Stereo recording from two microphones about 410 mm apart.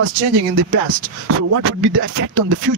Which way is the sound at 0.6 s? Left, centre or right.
Right.